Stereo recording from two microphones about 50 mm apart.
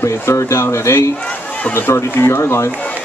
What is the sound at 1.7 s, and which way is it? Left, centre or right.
Speech, left.